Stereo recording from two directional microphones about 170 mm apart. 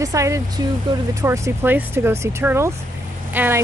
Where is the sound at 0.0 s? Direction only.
20° right (ahead or behind).